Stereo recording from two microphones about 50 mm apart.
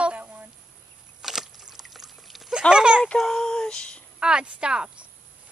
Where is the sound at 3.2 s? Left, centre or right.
Centre.